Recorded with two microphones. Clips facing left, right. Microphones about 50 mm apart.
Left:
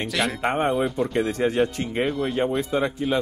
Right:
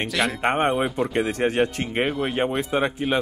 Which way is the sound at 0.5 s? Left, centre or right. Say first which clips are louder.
Right 2 dB; right.